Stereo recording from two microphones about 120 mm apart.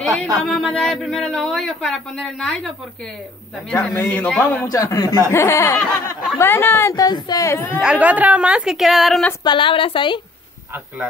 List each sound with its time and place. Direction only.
0.0 s speech: centre (ahead or behind)
4.0 s a man's voice: 15° left (ahead or behind)
4.6 s speech: 30° left (ahead or behind)
6.9 s speech: 35° left (ahead or behind)
7.8 s a woman's voice: 10° right (ahead or behind)
9.4 s a woman's voice: 40° left (ahead or behind)